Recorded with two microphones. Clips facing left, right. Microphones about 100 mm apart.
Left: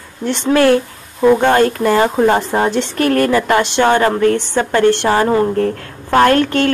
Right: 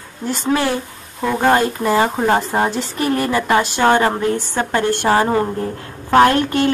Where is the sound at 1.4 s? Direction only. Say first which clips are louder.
Left 3 dB; 10° right (ahead or behind).